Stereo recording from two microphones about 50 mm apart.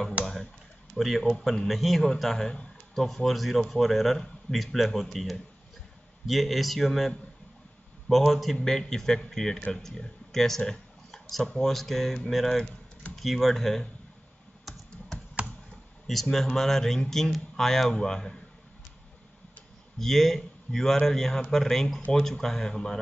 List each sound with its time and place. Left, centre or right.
0.9 s a man's voice: centre
15.4 s computer keyboard: right
16.1 s a man's voice: centre
20.0 s speech: centre